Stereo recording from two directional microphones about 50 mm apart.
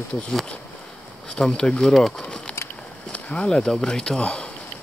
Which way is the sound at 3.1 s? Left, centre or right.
Left.